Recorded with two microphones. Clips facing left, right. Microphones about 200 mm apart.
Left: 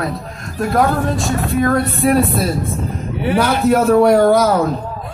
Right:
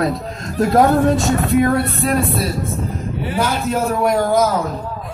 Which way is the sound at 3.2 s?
65° left (ahead or behind).